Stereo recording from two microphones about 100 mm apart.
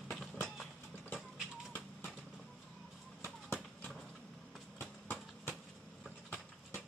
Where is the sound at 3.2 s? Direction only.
20° left (ahead or behind).